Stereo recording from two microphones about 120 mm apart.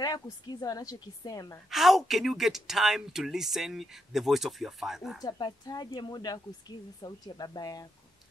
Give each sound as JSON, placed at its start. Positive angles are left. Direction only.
{"t": 0.0, "sound": "a woman's voice", "side_deg": 30}
{"t": 1.7, "sound": "speech", "side_deg": 0}
{"t": 5.2, "sound": "a woman's voice", "side_deg": 35}